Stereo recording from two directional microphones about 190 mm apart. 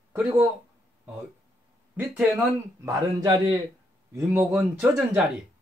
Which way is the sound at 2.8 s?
25° right (ahead or behind).